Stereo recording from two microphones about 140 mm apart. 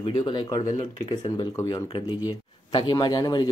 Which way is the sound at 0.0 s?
30° left (ahead or behind).